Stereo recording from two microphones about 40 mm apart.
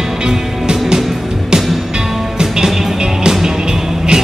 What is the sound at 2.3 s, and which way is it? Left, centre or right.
Music, centre.